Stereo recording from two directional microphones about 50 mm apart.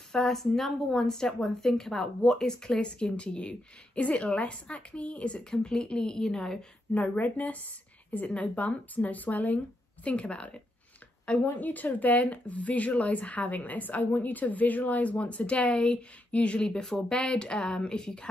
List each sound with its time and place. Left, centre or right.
0.1 s a woman's voice: centre
6.9 s a woman's voice: left
11.4 s a woman's voice: left; by 18.3 s centre